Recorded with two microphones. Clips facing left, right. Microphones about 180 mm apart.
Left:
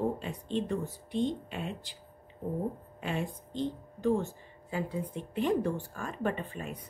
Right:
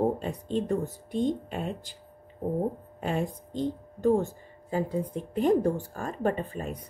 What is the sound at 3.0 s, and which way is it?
Speech, 40° right (ahead or behind).